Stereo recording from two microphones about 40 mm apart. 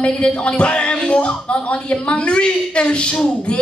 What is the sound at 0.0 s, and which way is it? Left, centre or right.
Speech, left.